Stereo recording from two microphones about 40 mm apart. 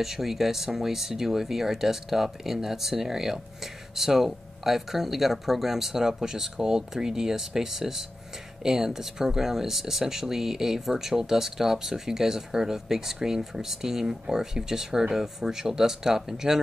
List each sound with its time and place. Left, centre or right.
0.0 s speech: centre